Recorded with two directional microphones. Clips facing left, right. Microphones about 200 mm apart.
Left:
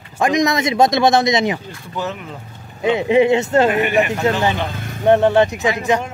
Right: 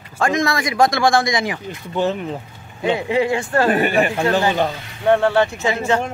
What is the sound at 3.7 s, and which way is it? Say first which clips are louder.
Speech: even; 35° right (ahead or behind).